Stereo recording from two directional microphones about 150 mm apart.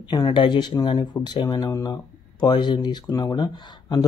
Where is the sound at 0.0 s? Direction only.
30° left (ahead or behind).